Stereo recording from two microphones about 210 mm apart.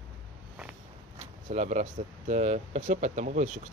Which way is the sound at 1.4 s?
35° right (ahead or behind).